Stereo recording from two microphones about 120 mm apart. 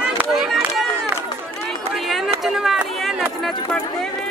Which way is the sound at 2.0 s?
Centre (ahead or behind).